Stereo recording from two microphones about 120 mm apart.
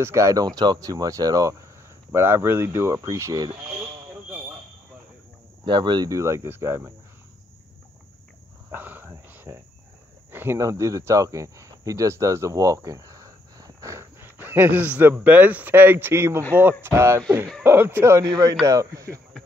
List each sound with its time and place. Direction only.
0.0 s speech: 25° right (ahead or behind)
5.7 s speech: 40° right (ahead or behind); by 6.9 s 20° right (ahead or behind)
8.6 s cricket: 15° right (ahead or behind)
10.3 s speech: 20° right (ahead or behind)